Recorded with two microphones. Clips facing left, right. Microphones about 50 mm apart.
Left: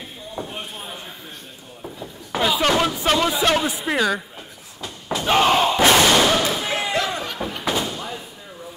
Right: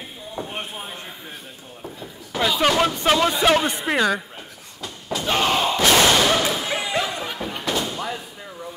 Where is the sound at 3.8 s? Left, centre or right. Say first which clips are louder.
Even; centre.